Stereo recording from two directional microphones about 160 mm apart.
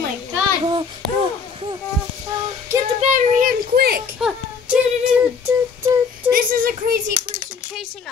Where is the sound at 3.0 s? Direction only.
50° right (ahead or behind); by 4.0 s 70° right (ahead or behind).